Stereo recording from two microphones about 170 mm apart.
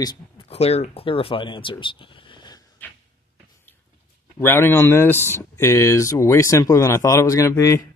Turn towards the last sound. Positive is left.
turn(degrees=15)  # may be behind; listen again after turning